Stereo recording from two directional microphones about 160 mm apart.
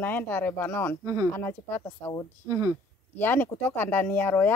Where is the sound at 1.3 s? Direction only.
15° left (ahead or behind).